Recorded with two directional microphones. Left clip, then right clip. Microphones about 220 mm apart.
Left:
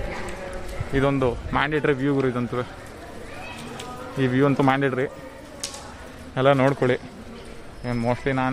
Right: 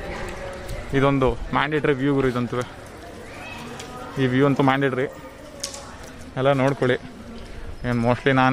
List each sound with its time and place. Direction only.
0.9 s a man's voice: 10° right (ahead or behind)
4.2 s a man's voice: 5° right (ahead or behind)
6.3 s a man's voice: 5° left (ahead or behind)
7.8 s speech: 25° right (ahead or behind)